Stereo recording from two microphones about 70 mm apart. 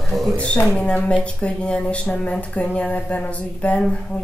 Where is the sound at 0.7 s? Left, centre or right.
Centre.